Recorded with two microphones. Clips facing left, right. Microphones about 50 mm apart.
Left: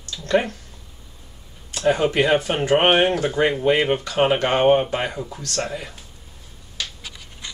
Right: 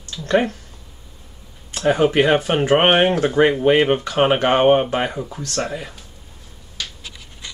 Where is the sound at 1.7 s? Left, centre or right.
Centre.